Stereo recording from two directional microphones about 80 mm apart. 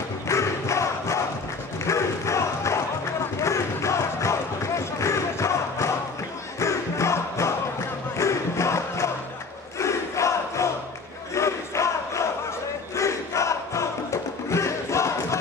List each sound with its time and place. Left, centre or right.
0.3 s crowd: left
6.6 s music: left
8.2 s crowd: left
12.9 s music: left